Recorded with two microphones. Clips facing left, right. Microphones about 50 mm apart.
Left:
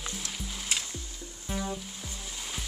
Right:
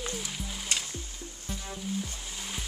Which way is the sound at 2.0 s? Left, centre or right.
Centre.